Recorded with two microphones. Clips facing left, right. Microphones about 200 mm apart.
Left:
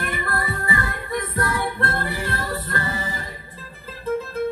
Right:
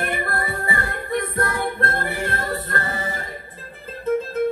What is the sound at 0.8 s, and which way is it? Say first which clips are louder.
Music: right 3 dB; 55° right (ahead or behind).